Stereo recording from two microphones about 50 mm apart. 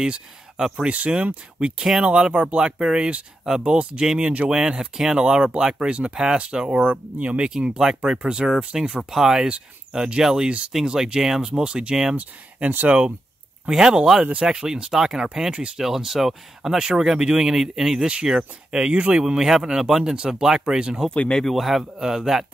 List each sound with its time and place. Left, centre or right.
0.6 s speech: centre
0.8 s speech: right
1.8 s speech: centre
4.5 s speech: centre
5.9 s speech: right
6.1 s speech: centre
9.1 s speech: centre
12.2 s speech: right
13.7 s speech: centre
15.8 s a man's voice: centre
21.1 s speech: centre
21.5 s a man's voice: centre